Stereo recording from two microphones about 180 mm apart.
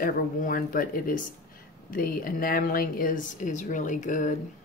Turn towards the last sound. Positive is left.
turn(degrees=45)  # may be behind; listen again after turning